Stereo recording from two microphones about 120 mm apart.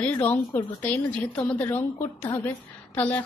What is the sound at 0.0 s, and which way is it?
A woman's voice, 15° left (ahead or behind).